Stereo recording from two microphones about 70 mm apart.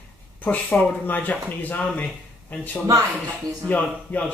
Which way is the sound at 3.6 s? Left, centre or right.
Left.